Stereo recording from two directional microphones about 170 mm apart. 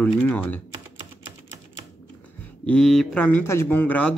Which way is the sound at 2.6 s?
5° left (ahead or behind).